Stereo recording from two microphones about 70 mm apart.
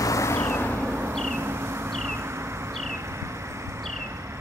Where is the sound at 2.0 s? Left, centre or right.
Right.